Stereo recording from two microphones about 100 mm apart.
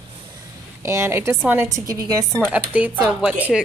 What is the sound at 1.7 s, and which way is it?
Speech, 35° right (ahead or behind).